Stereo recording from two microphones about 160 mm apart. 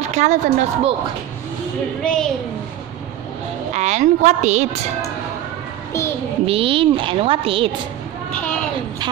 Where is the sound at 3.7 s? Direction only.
45° right (ahead or behind).